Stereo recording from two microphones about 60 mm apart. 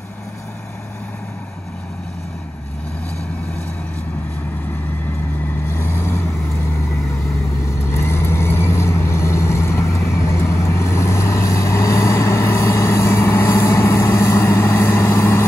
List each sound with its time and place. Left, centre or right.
5.5 s vehicle: left
7.9 s vehicle: left